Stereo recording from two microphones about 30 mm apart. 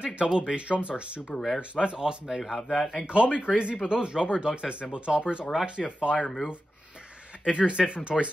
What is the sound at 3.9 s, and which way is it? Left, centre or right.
Speech, right.